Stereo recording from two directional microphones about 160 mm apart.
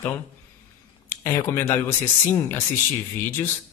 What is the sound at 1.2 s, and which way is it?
A man's voice, 15° left (ahead or behind).